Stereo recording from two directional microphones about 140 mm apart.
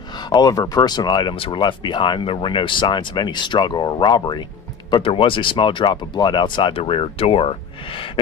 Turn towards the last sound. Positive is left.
turn(degrees=45)  # may be behind; listen again after turning